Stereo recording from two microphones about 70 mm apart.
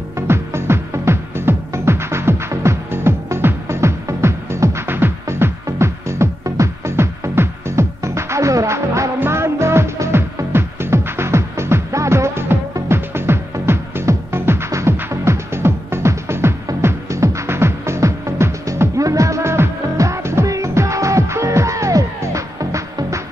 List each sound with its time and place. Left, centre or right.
0.3 s music: right